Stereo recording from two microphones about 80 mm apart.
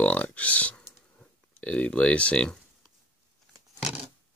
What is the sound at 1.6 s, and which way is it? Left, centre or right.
Speech, centre.